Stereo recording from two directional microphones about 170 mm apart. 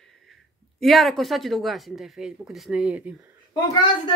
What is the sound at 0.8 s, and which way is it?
Speech, centre (ahead or behind).